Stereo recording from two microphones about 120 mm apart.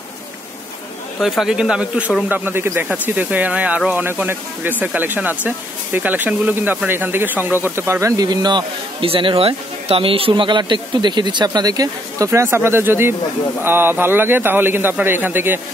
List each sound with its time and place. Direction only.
1.2 s speech: centre (ahead or behind)